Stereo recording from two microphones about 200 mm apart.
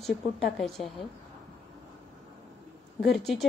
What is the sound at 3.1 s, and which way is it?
Speech, centre (ahead or behind).